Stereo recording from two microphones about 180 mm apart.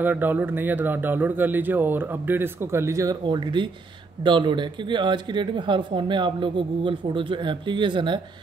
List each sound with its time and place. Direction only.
0.0 s speech: 10° right (ahead or behind); by 8.2 s 25° right (ahead or behind)